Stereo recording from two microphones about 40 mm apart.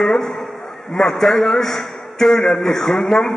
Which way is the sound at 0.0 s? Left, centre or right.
Centre.